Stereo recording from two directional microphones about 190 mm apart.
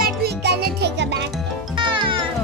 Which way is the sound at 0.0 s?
60° right (ahead or behind).